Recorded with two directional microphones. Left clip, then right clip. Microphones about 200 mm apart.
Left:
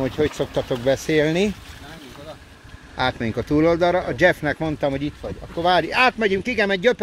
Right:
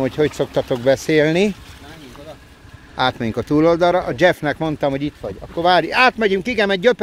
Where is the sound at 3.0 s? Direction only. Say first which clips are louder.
Right 4 dB; 15° right (ahead or behind).